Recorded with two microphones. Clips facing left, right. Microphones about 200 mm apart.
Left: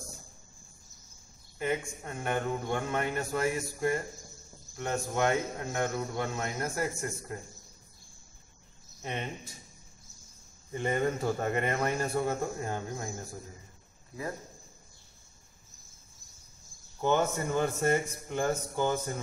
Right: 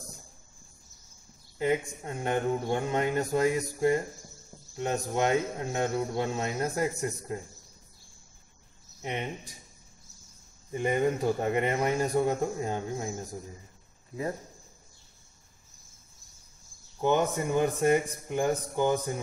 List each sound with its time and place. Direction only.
1.6 s speech: 20° right (ahead or behind)
9.0 s a man's voice: 15° right (ahead or behind)
10.7 s a man's voice: 15° right (ahead or behind)
17.0 s a man's voice: 15° right (ahead or behind)